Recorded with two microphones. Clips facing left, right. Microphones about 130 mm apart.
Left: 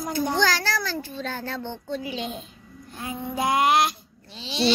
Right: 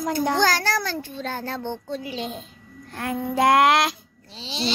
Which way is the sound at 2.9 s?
75° right (ahead or behind).